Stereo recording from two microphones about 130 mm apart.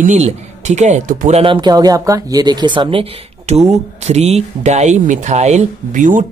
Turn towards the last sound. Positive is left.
turn(degrees=-80)